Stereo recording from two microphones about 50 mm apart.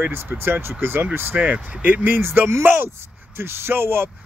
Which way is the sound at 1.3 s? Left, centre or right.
Right.